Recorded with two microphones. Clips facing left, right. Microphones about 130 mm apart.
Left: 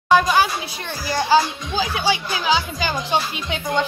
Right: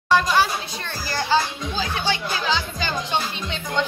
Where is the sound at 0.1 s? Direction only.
5° left (ahead or behind).